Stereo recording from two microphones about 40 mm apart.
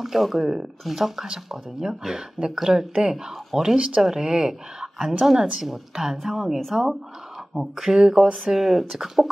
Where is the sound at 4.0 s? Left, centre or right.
Centre.